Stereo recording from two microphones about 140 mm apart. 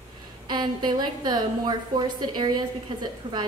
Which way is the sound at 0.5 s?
30° right (ahead or behind).